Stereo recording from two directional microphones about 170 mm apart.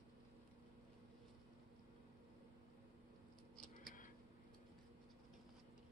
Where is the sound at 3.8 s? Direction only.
50° left (ahead or behind).